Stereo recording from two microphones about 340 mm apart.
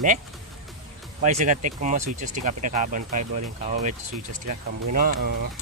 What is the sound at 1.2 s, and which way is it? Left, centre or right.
Speech, right.